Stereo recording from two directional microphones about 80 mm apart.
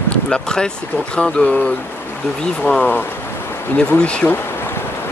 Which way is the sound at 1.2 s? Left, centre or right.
Centre.